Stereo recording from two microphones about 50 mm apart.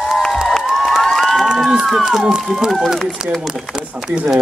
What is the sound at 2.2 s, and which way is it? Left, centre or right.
Speech, centre.